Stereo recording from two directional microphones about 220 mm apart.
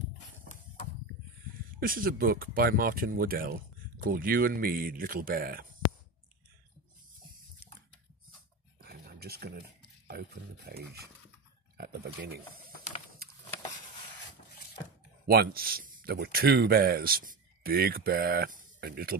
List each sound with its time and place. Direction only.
1.8 s speech: 40° right (ahead or behind)
8.8 s a sound: 45° right (ahead or behind)
10.7 s speech: 40° right (ahead or behind)
15.2 s speech: 45° right (ahead or behind)